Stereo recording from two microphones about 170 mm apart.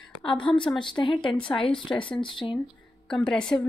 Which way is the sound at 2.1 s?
30° left (ahead or behind).